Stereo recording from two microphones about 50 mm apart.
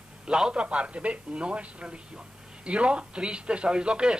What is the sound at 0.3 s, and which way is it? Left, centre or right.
Speech, centre.